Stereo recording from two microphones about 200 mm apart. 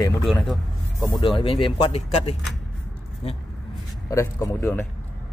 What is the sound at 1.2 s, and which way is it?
Speech, 25° left (ahead or behind).